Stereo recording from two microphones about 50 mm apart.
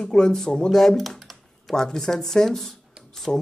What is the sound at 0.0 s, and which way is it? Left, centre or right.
Speech, centre.